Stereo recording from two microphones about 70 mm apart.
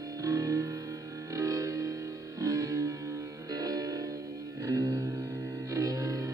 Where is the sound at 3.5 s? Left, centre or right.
Right.